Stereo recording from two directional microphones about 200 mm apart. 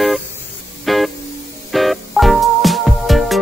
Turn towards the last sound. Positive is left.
turn(degrees=0)  # may be behind; listen again after turning